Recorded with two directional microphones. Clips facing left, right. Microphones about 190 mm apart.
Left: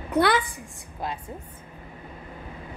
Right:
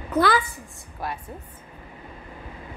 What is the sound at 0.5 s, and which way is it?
Speech, 20° left (ahead or behind).